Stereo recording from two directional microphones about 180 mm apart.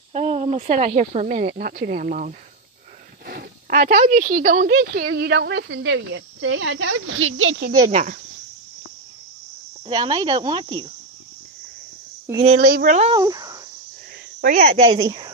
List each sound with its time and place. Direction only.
0.1 s speech: 35° right (ahead or behind)
1.5 s speech: 60° right (ahead or behind)
3.3 s a sound: 55° right (ahead or behind)
4.0 s speech: 45° right (ahead or behind)
4.6 s speech: 70° right (ahead or behind); by 7.7 s 85° right
7.9 s speech: 45° right (ahead or behind)
9.8 s speech: 25° right (ahead or behind)
12.4 s speech: 50° right (ahead or behind)
13.1 s speech: 20° right (ahead or behind)
14.4 s speech: 50° right (ahead or behind)
14.8 s speech: 25° right (ahead or behind)